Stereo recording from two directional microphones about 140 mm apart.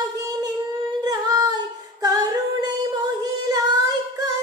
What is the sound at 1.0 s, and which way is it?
Humming, 30° right (ahead or behind).